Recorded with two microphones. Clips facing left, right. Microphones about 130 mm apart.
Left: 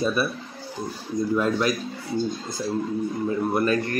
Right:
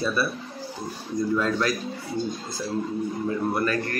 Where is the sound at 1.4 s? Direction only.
20° left (ahead or behind).